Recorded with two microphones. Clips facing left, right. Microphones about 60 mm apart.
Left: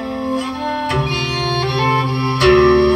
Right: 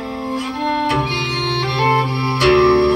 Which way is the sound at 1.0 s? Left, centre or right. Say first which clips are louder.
Left 1 dB; left.